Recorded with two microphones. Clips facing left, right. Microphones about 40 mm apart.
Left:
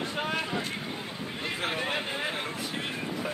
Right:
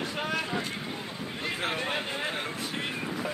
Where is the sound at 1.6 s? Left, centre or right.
Centre.